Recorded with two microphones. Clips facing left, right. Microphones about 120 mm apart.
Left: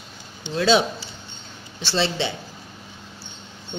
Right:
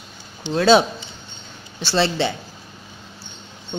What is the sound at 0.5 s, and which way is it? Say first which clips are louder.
Speech: right 4 dB; 45° right (ahead or behind).